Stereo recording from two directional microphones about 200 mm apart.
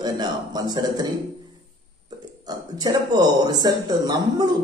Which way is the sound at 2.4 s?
20° right (ahead or behind).